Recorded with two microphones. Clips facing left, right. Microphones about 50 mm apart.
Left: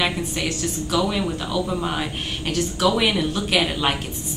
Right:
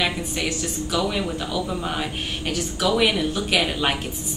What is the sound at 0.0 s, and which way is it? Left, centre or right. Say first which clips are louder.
A woman's voice: left 1 dB; centre.